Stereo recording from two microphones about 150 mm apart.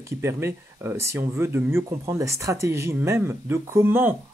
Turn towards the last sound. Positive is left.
turn(degrees=-15)  # may be behind; listen again after turning